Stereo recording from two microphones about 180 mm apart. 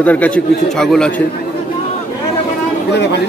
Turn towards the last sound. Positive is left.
turn(degrees=70)  # may be behind; listen again after turning